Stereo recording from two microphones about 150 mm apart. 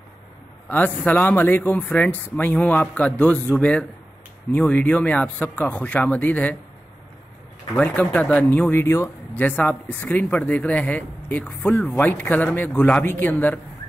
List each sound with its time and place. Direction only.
0.7 s speech: 10° left (ahead or behind)
7.7 s speech: 10° left (ahead or behind)